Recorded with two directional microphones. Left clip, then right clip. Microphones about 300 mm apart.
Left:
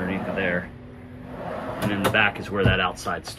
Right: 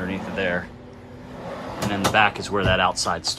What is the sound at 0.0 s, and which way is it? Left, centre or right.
Air conditioning, centre.